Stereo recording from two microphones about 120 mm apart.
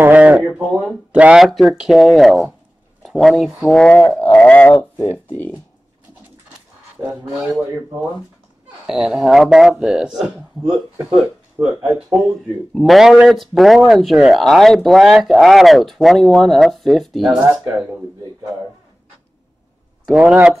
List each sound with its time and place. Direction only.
0.0 s speech: 15° right (ahead or behind); by 4.0 s 10° left (ahead or behind)
4.2 s a sound: 15° left (ahead or behind)
7.0 s speech: 5° right (ahead or behind)
8.8 s speech: 5° right (ahead or behind)
11.5 s speech: 15° right (ahead or behind)
12.1 s speech: 5° right (ahead or behind)
20.1 s speech: 10° right (ahead or behind)